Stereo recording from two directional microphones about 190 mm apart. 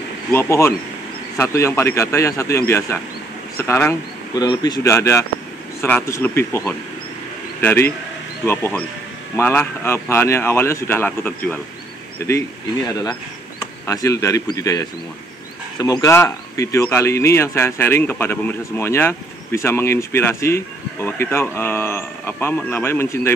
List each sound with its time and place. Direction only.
0.3 s speech: 15° left (ahead or behind)
13.8 s speech: 15° left (ahead or behind)